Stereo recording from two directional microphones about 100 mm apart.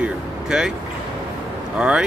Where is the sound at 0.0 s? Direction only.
5° right (ahead or behind).